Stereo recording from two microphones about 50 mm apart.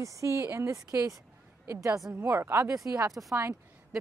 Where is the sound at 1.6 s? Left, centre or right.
Right.